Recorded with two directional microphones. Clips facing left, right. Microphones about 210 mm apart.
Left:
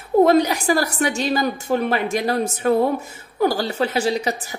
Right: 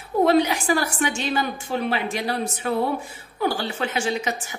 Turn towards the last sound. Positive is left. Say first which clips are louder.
# left 4 dB
turn(degrees=35)  # may be behind; listen again after turning